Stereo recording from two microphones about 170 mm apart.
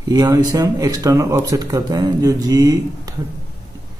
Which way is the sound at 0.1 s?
25° right (ahead or behind).